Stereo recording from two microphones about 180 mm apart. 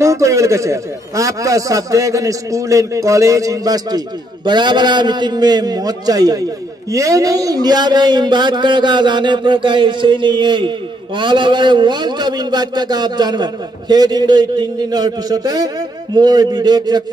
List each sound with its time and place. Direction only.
0.0 s a man's voice: 15° right (ahead or behind)